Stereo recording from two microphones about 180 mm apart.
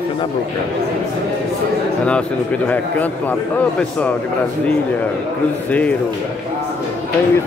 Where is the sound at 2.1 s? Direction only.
5° left (ahead or behind).